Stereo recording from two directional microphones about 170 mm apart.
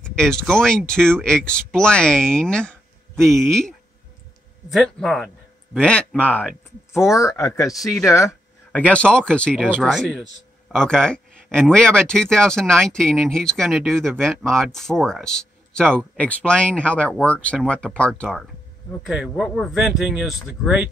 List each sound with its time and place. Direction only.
0.0 s speech: 5° left (ahead or behind)